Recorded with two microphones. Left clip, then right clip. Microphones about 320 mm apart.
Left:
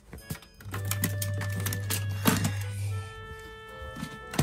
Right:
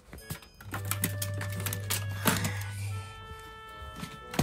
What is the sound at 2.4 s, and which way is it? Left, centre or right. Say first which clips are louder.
Music: left 1 dB; centre.